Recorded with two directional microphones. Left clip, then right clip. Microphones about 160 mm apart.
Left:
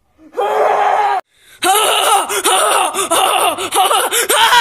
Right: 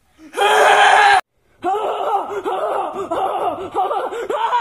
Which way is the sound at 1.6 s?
25° left (ahead or behind).